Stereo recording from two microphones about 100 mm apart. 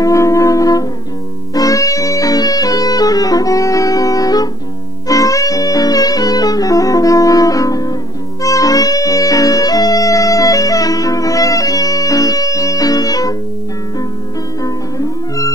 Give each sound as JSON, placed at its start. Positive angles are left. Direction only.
{"t": 0.0, "sound": "music", "side_deg": 30}
{"t": 14.6, "sound": "music", "side_deg": 35}